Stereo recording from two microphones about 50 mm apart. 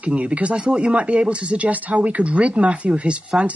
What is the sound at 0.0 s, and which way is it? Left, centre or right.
A woman's voice, right.